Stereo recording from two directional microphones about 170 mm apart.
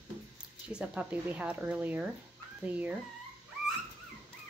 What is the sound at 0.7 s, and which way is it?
Speech, 5° right (ahead or behind).